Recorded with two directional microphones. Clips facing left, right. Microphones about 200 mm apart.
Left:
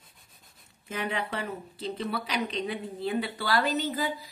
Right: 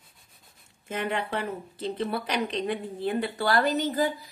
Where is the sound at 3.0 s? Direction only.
45° right (ahead or behind).